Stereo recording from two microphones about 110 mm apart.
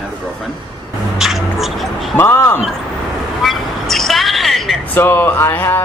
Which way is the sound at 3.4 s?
Centre (ahead or behind).